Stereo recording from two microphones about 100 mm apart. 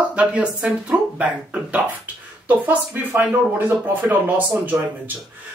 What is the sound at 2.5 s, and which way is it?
Speech, 15° right (ahead or behind).